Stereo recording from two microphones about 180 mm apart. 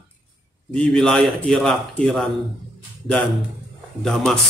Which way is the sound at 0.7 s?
5° left (ahead or behind).